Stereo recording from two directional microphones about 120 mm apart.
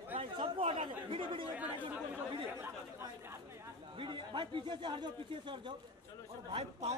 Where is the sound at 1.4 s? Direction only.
15° right (ahead or behind).